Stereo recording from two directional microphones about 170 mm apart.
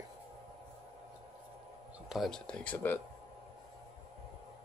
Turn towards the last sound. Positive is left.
turn(degrees=10)  # may be behind; listen again after turning